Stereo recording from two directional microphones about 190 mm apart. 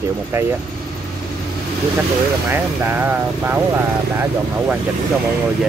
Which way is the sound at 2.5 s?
10° right (ahead or behind).